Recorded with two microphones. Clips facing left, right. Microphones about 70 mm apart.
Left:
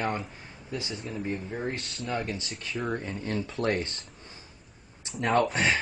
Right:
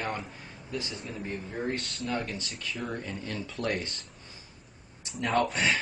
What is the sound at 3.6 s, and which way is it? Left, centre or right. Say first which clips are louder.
Speech: left 3 dB; left.